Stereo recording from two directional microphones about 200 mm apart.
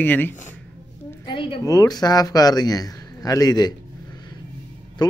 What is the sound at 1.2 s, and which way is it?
A woman's voice, 25° left (ahead or behind).